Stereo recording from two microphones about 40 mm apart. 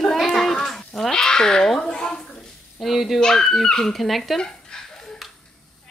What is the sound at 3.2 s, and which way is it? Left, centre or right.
Speech, centre.